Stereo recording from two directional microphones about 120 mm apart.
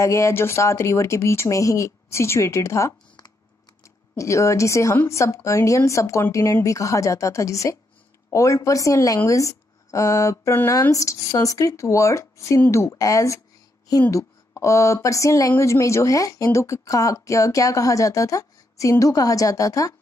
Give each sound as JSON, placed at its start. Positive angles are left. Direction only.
{"t": 0.0, "sound": "speech", "side_deg": 25}